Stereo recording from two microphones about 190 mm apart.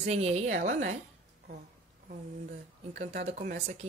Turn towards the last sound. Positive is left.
turn(degrees=-55)  # may be behind; listen again after turning